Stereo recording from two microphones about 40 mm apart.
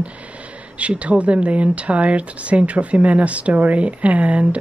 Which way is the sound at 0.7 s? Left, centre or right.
Right.